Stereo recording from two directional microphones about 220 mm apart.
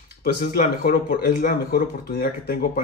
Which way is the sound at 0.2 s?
40° left (ahead or behind).